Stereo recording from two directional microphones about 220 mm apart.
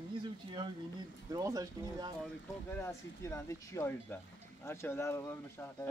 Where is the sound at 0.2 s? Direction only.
20° right (ahead or behind).